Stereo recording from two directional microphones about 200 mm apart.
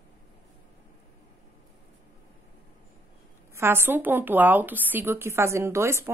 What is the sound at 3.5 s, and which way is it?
A woman's voice, 10° right (ahead or behind).